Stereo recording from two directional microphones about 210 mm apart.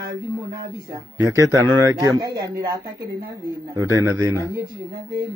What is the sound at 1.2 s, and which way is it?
Speech, 15° right (ahead or behind).